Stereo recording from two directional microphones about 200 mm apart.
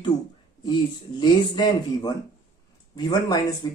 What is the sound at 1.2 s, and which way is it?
Speech, 20° left (ahead or behind).